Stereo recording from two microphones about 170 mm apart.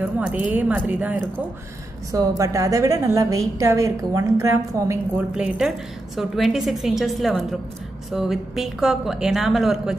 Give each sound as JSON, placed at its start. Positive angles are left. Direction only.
{"t": 0.0, "sound": "a woman's voice", "side_deg": -5}
{"t": 5.3, "sound": "a woman's voice", "side_deg": -5}